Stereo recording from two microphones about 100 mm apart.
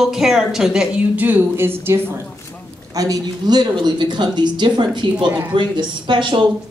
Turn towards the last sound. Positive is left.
turn(degrees=-50)  # may be behind; listen again after turning